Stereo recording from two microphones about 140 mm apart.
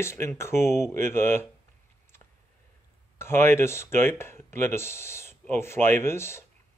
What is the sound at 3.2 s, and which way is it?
Speech, 15° left (ahead or behind).